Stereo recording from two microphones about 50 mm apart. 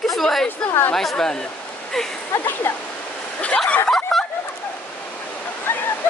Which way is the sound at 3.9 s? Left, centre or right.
Centre.